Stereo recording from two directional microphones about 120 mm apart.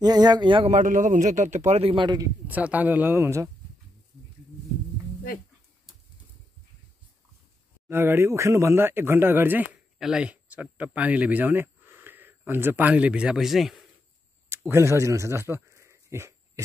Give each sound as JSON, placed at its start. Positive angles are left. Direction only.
{"t": 0.0, "sound": "a man's voice", "side_deg": -35}
{"t": 0.7, "sound": "a man's voice", "side_deg": -90}
{"t": 2.0, "sound": "a man's voice", "side_deg": -30}
{"t": 2.4, "sound": "speech", "side_deg": -15}
{"t": 7.9, "sound": "speech", "side_deg": -20}
{"t": 14.5, "sound": "a sound", "side_deg": -20}